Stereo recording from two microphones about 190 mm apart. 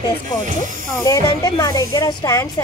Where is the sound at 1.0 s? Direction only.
20° left (ahead or behind).